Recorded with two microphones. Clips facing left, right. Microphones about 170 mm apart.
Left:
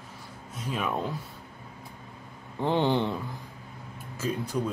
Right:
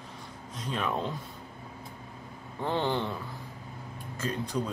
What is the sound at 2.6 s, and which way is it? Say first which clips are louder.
Speech: left 4 dB; 20° left (ahead or behind).